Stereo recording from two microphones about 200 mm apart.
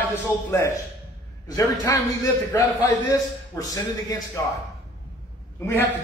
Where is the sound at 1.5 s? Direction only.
15° left (ahead or behind).